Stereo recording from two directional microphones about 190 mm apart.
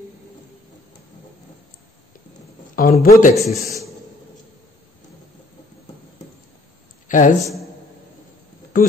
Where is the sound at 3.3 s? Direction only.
Centre (ahead or behind).